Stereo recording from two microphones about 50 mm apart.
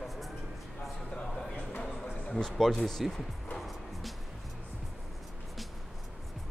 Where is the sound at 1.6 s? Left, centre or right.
Left.